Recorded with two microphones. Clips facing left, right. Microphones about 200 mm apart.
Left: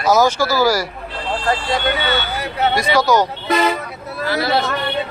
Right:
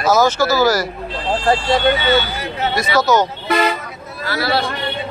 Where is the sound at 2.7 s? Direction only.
15° left (ahead or behind).